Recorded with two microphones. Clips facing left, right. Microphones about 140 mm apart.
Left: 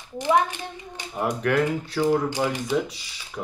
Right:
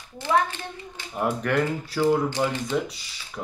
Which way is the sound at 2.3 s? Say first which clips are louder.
Left 1 dB; 10° left (ahead or behind).